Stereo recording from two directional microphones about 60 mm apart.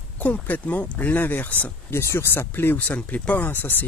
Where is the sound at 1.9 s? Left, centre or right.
Left.